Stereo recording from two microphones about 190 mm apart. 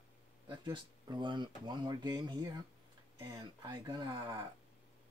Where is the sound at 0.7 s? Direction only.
25° right (ahead or behind).